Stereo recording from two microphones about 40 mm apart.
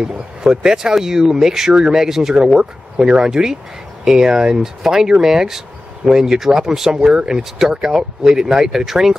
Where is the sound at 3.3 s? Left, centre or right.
Centre.